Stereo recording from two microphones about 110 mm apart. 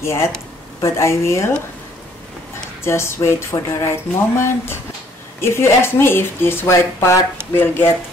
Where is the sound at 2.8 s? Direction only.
25° left (ahead or behind).